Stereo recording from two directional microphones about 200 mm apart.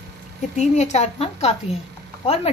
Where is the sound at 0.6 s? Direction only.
35° left (ahead or behind).